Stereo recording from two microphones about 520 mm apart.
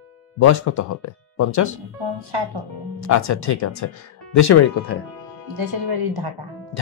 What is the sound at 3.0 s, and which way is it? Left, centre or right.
A man's voice, left.